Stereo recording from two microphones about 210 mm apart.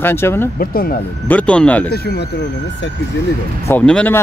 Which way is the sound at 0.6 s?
45° left (ahead or behind).